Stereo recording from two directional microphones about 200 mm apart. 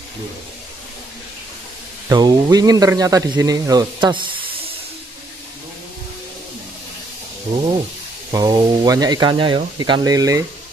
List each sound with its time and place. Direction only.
2.0 s speech: 20° right (ahead or behind)
8.3 s speech: 20° right (ahead or behind)